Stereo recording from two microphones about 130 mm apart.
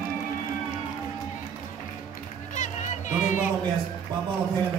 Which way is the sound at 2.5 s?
70° left (ahead or behind).